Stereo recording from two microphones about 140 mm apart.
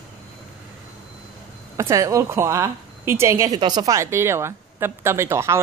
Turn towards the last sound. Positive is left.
turn(degrees=-20)  # may be behind; listen again after turning